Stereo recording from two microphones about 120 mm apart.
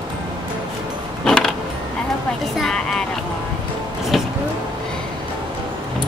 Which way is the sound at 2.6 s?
5° left (ahead or behind).